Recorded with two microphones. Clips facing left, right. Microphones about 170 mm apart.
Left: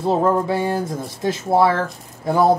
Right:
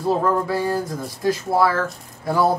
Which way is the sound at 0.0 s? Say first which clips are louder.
Left 2 dB; 25° left (ahead or behind).